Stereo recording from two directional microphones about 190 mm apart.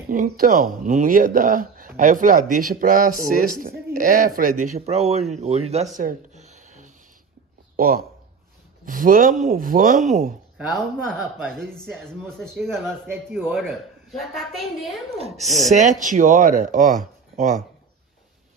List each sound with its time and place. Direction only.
0.1 s speech: 45° right (ahead or behind)
5.9 s a sound: 40° right (ahead or behind)
7.7 s speech: 50° right (ahead or behind)
10.8 s speech: 5° right (ahead or behind)
13.0 s speech: 10° right (ahead or behind)
13.5 s speech: centre (ahead or behind)
16.0 s speech: 45° right (ahead or behind)